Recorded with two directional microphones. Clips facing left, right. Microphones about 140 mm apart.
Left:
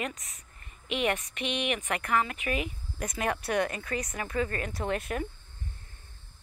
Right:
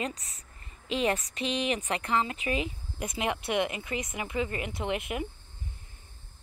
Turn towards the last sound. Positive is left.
turn(degrees=-20)  # may be behind; listen again after turning